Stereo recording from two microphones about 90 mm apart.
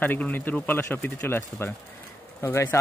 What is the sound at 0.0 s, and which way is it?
Speech, 20° left (ahead or behind).